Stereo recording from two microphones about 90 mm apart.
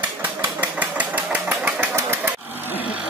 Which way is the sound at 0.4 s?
15° right (ahead or behind).